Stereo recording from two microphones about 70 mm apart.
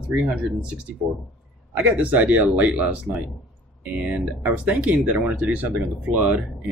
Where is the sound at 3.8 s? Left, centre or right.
Right.